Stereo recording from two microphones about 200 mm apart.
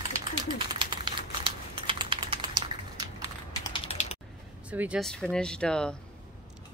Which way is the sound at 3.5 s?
20° left (ahead or behind).